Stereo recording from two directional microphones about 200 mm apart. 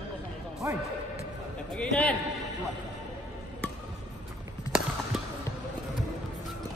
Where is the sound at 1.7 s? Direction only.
5° left (ahead or behind).